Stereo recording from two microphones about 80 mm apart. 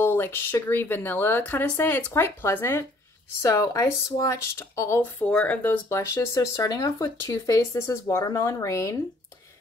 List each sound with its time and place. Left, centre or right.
0.0 s speech: left
3.4 s speech: left
5.3 s speech: centre
5.9 s speech: left